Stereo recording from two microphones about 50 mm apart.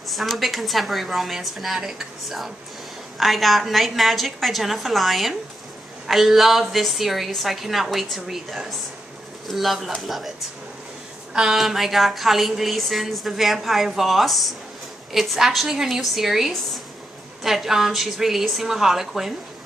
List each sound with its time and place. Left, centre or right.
0.1 s a woman's voice: centre
11.3 s a woman's voice: centre